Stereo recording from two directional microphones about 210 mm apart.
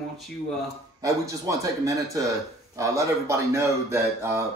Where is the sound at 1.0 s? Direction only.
15° right (ahead or behind).